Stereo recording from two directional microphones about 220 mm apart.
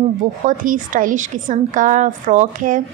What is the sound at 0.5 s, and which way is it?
A woman's voice, 35° right (ahead or behind).